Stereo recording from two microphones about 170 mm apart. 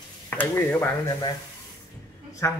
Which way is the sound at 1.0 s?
20° left (ahead or behind).